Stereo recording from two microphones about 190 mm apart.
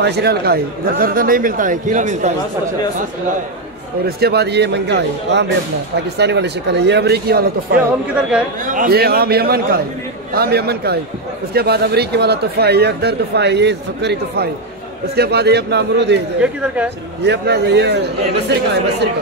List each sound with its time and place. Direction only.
0.0 s speech: 60° right (ahead or behind); by 2.3 s 40° right (ahead or behind)
4.2 s speech: 60° right (ahead or behind)
17.2 s speech: 60° right (ahead or behind)